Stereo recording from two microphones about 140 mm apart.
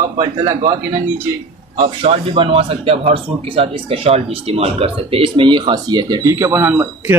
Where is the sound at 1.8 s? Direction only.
40° right (ahead or behind); by 7.1 s 15° right (ahead or behind).